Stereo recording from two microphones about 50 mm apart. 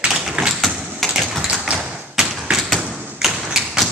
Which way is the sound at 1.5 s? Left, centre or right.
Centre.